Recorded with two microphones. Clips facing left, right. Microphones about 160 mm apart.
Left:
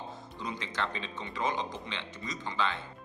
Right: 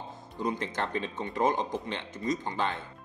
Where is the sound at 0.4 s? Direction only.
50° right (ahead or behind).